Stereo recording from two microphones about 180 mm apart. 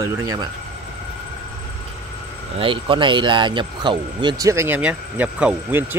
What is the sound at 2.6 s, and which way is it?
Speech, 30° right (ahead or behind).